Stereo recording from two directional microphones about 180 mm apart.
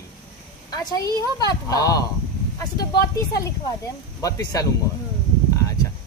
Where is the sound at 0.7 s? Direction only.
20° left (ahead or behind).